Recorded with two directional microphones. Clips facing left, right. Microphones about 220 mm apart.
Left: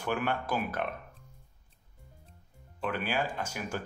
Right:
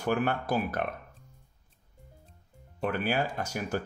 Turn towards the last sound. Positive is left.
turn(degrees=-40)  # may be behind; listen again after turning